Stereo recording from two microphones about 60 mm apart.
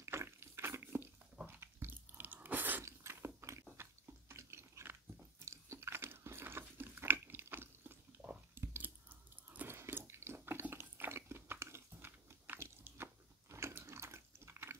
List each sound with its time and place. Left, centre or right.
0.0 s a sound: right
1.4 s drip: right
2.8 s biting: right
3.7 s a sound: right
5.4 s biting: right
8.2 s chewing: centre
8.5 s chewing: right
9.7 s a sound: right
11.6 s chewing: right
12.8 s biting: right
13.5 s biting: right
13.7 s water: right